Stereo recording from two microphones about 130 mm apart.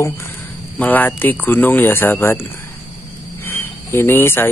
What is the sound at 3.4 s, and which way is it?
Cricket, 20° left (ahead or behind).